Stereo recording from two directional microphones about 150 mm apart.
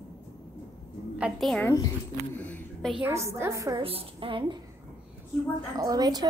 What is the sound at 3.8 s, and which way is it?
Speech, 40° right (ahead or behind).